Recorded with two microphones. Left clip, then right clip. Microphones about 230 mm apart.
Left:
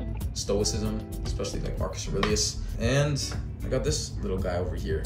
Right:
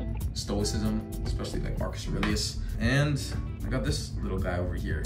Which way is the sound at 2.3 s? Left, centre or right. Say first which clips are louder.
Left 5 dB; centre.